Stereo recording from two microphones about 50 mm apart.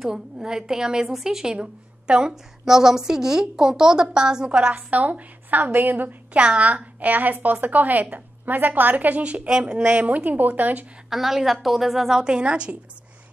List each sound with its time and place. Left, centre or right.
0.0 s a woman's voice: centre
4.9 s a woman's voice: right
6.3 s a woman's voice: right
9.8 s a woman's voice: right
11.1 s a woman's voice: centre; by 12.7 s right